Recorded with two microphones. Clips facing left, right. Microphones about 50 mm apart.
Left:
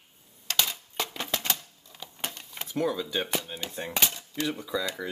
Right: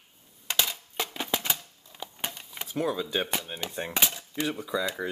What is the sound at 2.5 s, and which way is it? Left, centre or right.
Speech, centre.